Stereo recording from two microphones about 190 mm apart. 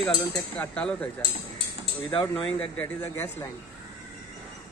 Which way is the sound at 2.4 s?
5° left (ahead or behind).